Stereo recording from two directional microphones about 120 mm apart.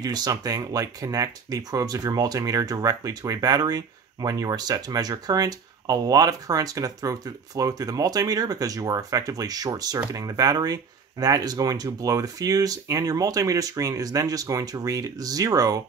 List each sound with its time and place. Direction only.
0.0 s speech: 35° right (ahead or behind)